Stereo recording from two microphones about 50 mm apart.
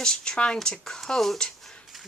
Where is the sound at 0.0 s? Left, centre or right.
Centre.